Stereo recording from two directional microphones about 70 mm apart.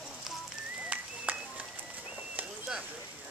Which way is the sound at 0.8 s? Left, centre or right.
Right.